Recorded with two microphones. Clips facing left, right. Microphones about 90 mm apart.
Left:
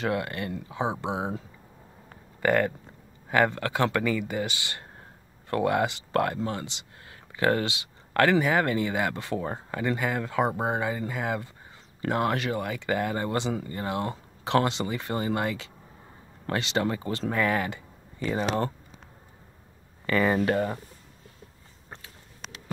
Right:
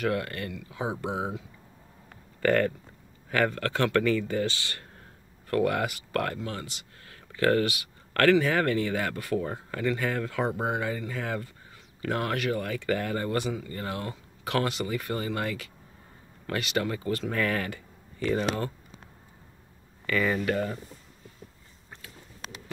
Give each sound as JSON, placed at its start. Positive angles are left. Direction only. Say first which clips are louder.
{"t": 0.0, "sound": "speech", "louder": "even", "side_deg": 20}
{"t": 0.5, "sound": "speech", "louder": "left 4 dB", "side_deg": 35}
{"t": 0.7, "sound": "speech", "louder": "left 2 dB", "side_deg": 20}
{"t": 2.4, "sound": "speech", "louder": "even", "side_deg": 15}
{"t": 20.1, "sound": "speech", "louder": "left 3 dB", "side_deg": 35}